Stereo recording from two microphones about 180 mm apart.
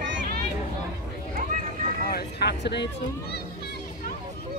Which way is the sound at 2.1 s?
60° left (ahead or behind).